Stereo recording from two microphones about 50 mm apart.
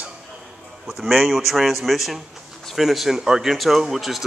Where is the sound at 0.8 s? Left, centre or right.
Centre.